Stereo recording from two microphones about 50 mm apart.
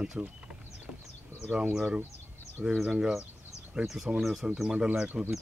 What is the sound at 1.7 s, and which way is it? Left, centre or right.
Speech, centre.